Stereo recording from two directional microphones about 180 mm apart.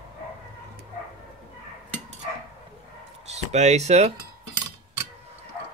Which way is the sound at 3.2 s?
40° right (ahead or behind).